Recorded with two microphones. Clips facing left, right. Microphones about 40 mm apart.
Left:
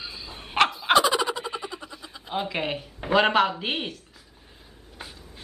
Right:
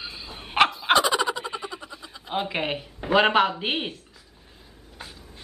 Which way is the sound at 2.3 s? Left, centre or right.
Centre.